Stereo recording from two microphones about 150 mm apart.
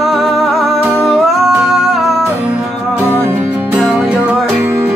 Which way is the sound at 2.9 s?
15° right (ahead or behind).